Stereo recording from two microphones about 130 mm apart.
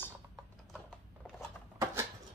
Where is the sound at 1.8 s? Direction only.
20° right (ahead or behind).